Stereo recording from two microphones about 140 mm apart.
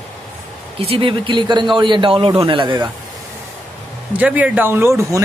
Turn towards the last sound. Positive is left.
turn(degrees=-20)  # may be behind; listen again after turning